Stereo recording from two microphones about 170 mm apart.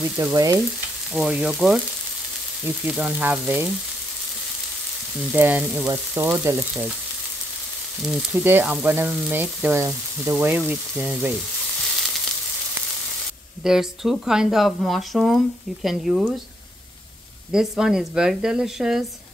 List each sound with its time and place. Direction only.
0.1 s frying: 20° right (ahead or behind)
1.1 s speech: 5° right (ahead or behind)
2.6 s frying: 10° right (ahead or behind)
5.3 s frying: 10° right (ahead or behind)
8.1 s frying: 10° right (ahead or behind)
13.6 s speech: 5° right (ahead or behind)
17.5 s speech: 5° right (ahead or behind)